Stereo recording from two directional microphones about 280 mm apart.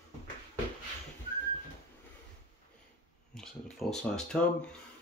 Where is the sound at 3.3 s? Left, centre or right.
Centre.